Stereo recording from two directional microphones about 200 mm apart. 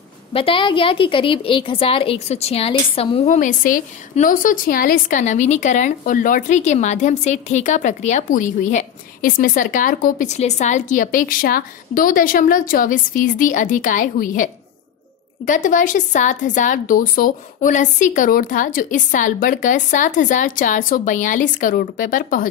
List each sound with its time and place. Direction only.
0.3 s a woman's voice: 25° left (ahead or behind); by 22.5 s 45° left (ahead or behind)